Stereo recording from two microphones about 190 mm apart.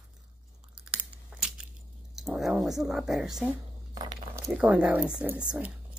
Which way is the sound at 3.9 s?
20° right (ahead or behind).